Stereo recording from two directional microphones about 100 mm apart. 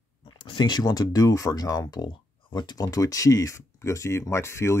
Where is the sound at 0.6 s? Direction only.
45° left (ahead or behind).